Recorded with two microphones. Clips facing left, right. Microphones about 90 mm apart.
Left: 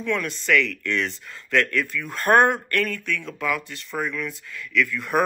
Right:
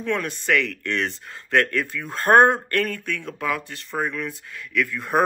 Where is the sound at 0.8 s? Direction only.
55° right (ahead or behind).